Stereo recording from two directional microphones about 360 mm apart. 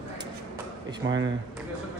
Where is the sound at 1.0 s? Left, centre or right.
Right.